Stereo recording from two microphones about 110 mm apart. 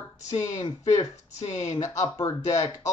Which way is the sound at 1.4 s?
90° left.